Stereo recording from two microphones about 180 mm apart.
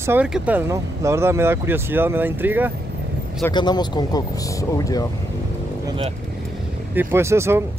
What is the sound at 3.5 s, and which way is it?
Speech, 25° left (ahead or behind).